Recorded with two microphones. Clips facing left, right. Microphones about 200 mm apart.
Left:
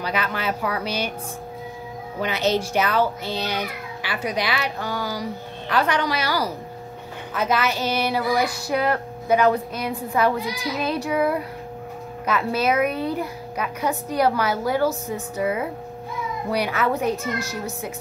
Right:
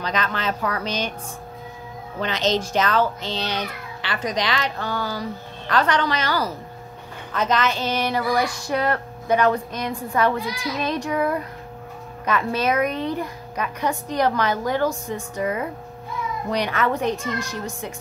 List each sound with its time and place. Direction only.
0.0 s a child's voice: 10° left (ahead or behind)
2.1 s a child's voice: 10° left (ahead or behind)
17.2 s speech: 15° right (ahead or behind)